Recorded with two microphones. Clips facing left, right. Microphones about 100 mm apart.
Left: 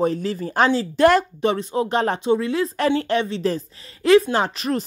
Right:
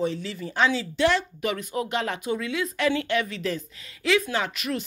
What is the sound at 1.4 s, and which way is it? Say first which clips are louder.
Speech: left 7 dB; 30° left (ahead or behind).